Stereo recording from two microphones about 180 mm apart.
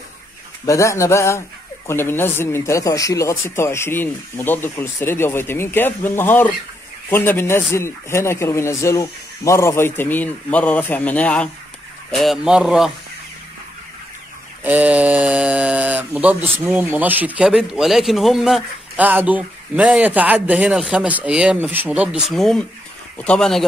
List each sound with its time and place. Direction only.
0.7 s speech: 15° left (ahead or behind); by 12.9 s centre (ahead or behind)
14.6 s speech: 10° right (ahead or behind)